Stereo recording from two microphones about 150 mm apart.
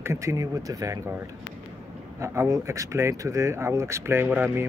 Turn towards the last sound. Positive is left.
turn(degrees=-15)  # may be behind; listen again after turning